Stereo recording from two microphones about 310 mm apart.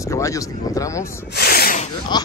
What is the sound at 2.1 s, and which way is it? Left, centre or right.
Speech, centre.